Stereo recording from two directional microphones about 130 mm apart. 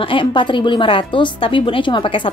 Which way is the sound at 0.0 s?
40° left (ahead or behind).